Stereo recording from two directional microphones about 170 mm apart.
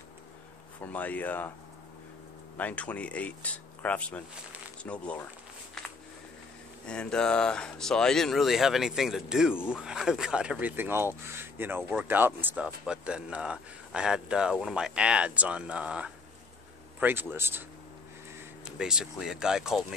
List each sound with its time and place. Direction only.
0.7 s speech: 10° left (ahead or behind)
2.5 s speech: 10° left (ahead or behind)
5.8 s a sound: 5° left (ahead or behind)
6.9 s speech: 5° left (ahead or behind); by 17.6 s 15° right (ahead or behind)
18.8 s speech: 5° right (ahead or behind)